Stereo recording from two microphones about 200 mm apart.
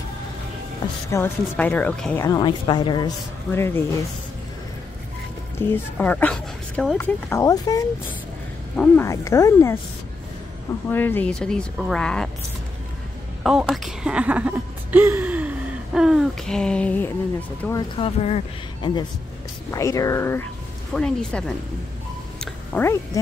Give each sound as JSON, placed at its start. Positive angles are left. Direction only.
{"t": 1.1, "sound": "a woman's voice", "side_deg": 10}
{"t": 2.2, "sound": "a woman's voice", "side_deg": 20}
{"t": 5.6, "sound": "a woman's voice", "side_deg": 10}
{"t": 7.2, "sound": "a woman's voice", "side_deg": 15}
{"t": 10.9, "sound": "a woman's voice", "side_deg": 10}
{"t": 13.4, "sound": "a woman's voice", "side_deg": 0}
{"t": 17.9, "sound": "speech", "side_deg": 30}
{"t": 19.7, "sound": "a woman's voice", "side_deg": 15}
{"t": 22.4, "sound": "music", "side_deg": 10}